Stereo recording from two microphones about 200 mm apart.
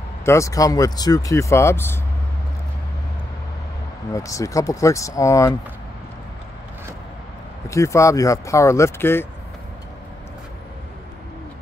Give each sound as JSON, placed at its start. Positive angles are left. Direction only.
{"t": 0.2, "sound": "speech", "side_deg": 15}
{"t": 4.1, "sound": "speech", "side_deg": 15}
{"t": 7.7, "sound": "speech", "side_deg": 15}